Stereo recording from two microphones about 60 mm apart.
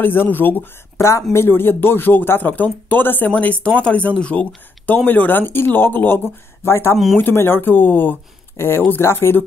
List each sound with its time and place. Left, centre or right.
0.0 s speech: left; by 4.5 s centre
4.8 s speech: left
8.5 s speech: left